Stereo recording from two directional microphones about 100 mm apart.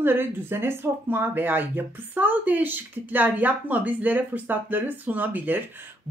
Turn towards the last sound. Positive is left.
turn(degrees=-20)  # may be behind; listen again after turning